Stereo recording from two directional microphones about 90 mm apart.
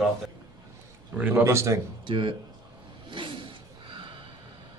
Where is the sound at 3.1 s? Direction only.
65° right (ahead or behind).